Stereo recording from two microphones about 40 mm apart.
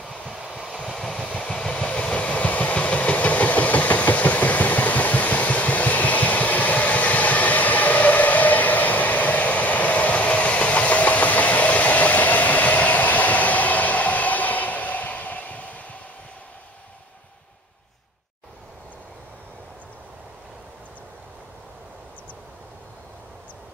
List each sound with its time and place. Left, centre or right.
0.8 s vehicle: centre
1.3 s vehicle: left